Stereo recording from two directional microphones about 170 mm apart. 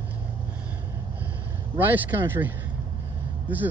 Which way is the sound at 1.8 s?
10° right (ahead or behind).